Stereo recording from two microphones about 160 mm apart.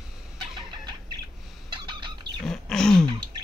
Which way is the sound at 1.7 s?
30° right (ahead or behind).